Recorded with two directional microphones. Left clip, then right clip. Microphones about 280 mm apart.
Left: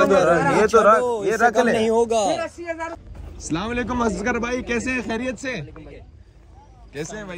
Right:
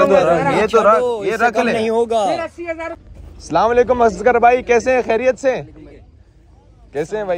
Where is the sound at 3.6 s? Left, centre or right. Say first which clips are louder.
Right 15 dB; right.